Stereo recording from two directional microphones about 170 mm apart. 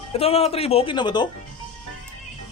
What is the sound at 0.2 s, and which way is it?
Speech, 35° left (ahead or behind).